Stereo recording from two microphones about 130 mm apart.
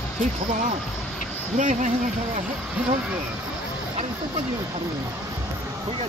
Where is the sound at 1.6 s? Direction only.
70° right (ahead or behind).